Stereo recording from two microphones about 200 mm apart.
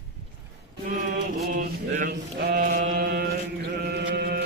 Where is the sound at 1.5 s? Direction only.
45° right (ahead or behind).